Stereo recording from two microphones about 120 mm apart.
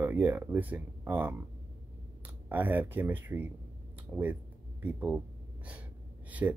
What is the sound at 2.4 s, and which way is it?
Speech, 15° right (ahead or behind).